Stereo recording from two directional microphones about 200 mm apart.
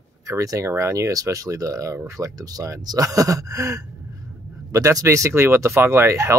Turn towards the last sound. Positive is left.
turn(degrees=-15)  # may be behind; listen again after turning